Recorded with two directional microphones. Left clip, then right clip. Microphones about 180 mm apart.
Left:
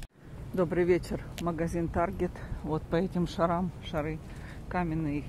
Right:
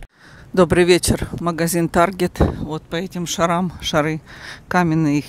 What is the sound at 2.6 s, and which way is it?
Speech, 15° right (ahead or behind).